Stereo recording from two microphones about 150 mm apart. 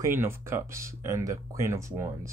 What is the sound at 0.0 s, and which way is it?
Speech, 15° right (ahead or behind).